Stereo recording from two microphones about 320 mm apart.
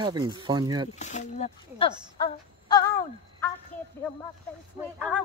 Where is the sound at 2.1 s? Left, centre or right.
Centre.